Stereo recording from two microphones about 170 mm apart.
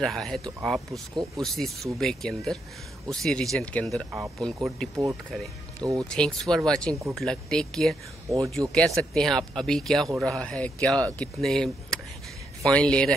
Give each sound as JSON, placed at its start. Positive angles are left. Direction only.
{"t": 0.0, "sound": "speech", "side_deg": 0}
{"t": 5.8, "sound": "speech", "side_deg": -20}
{"t": 6.0, "sound": "speech", "side_deg": 5}